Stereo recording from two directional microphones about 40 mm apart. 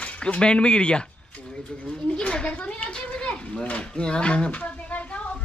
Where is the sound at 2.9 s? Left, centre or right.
Left.